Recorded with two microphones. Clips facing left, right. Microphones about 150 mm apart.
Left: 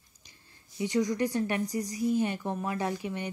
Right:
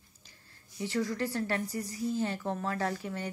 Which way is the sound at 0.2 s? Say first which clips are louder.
Left 2 dB; 15° left (ahead or behind).